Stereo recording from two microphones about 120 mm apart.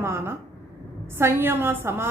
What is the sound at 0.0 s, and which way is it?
A woman's voice, 20° right (ahead or behind).